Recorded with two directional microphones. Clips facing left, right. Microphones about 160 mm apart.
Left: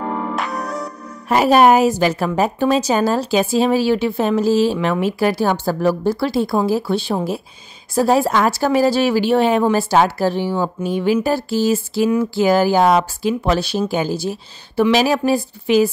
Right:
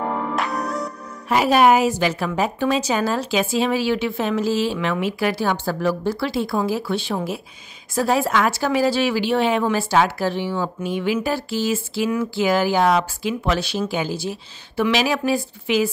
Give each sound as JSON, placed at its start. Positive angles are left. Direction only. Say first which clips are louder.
{"t": 0.4, "sound": "music", "louder": "even", "side_deg": 0}
{"t": 1.3, "sound": "speech", "louder": "left 3 dB", "side_deg": 45}